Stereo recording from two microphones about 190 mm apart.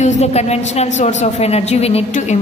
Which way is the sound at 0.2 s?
35° left (ahead or behind).